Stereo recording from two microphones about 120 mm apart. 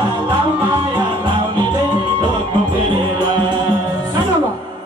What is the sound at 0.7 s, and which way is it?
Music, 40° right (ahead or behind).